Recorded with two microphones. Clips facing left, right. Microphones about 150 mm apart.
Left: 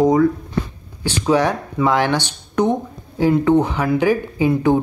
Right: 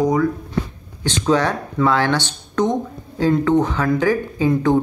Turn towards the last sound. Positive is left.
turn(degrees=15)  # may be behind; listen again after turning